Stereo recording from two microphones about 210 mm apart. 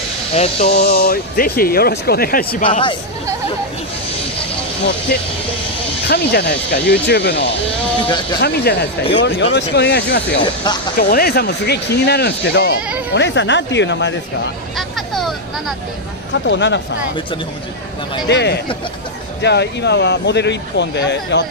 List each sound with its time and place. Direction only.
0.3 s speech: 30° left (ahead or behind)
0.7 s speech: 50° left (ahead or behind)
6.0 s speech: 50° left (ahead or behind)
10.4 s speech: 20° left (ahead or behind)
11.0 s speech: 45° left (ahead or behind)
14.8 s vehicle: centre (ahead or behind)
16.4 s speech: 60° left (ahead or behind)
18.3 s speech: 55° left (ahead or behind)